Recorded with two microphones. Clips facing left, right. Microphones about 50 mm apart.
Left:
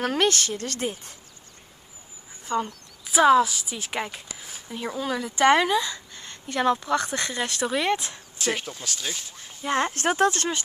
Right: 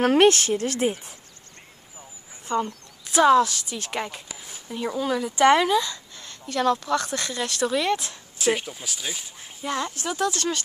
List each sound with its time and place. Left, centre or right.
0.0 s speech: right; by 1.1 s centre
2.5 s speech: centre
3.1 s a woman's voice: centre; by 8.2 s left
8.4 s speech: centre
9.9 s speech: left